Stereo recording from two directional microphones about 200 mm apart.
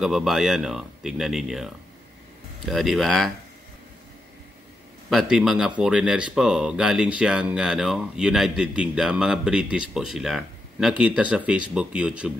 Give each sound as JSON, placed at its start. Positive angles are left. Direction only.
{"t": 0.0, "sound": "speech", "side_deg": 0}
{"t": 5.1, "sound": "speech", "side_deg": 0}